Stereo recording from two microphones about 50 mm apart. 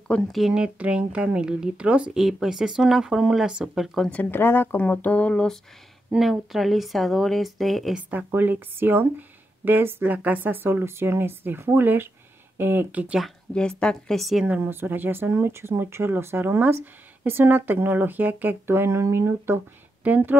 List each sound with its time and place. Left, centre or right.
0.1 s speech: left
0.7 s speech: right
2.1 s speech: centre
4.1 s speech: left
4.4 s a woman's voice: left
4.7 s speech: left
6.1 s speech: centre
8.3 s speech: right
10.1 s speech: right
13.5 s speech: left
14.7 s speech: right
15.5 s speech: right
18.7 s speech: right
20.0 s speech: right